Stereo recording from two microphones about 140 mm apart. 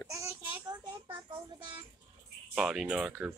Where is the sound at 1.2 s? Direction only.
40° right (ahead or behind).